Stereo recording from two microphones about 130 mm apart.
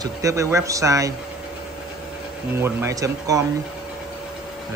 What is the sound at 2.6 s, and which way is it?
Speech, 20° right (ahead or behind).